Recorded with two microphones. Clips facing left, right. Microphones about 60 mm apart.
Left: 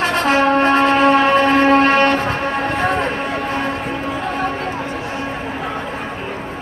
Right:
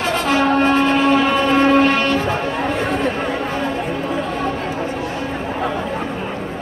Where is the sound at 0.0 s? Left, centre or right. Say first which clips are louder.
Left 2 dB; left.